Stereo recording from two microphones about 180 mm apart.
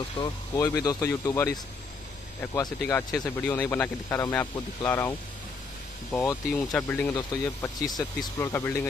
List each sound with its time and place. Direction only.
0.2 s speech: 20° left (ahead or behind)
6.1 s speech: 10° left (ahead or behind)
7.2 s speech: 20° left (ahead or behind)